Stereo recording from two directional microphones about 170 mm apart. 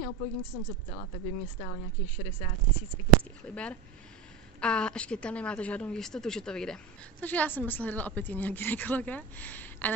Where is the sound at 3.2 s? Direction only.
5° left (ahead or behind).